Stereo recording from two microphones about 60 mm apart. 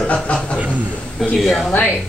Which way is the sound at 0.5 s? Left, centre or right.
Right.